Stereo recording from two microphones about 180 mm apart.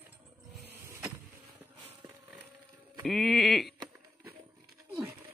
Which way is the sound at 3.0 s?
Centre (ahead or behind).